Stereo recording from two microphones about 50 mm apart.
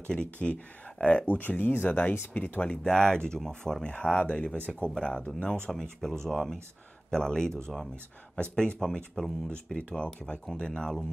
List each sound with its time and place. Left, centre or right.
0.1 s speech: left
2.6 s speech: centre
3.9 s speech: left
4.9 s speech: centre
5.2 s speech: left
5.7 s speech: centre
9.7 s speech: left